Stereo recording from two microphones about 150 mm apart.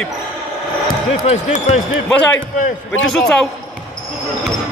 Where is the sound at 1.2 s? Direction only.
45° left (ahead or behind).